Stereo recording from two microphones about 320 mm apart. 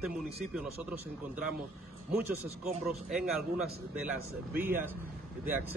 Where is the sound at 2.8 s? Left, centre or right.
Centre.